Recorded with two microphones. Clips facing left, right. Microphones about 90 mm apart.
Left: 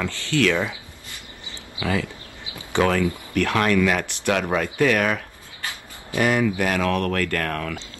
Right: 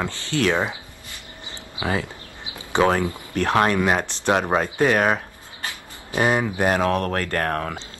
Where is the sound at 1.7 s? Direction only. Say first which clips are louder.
Even; 25° right (ahead or behind).